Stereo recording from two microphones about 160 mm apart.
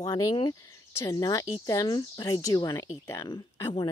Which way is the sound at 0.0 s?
20° left (ahead or behind).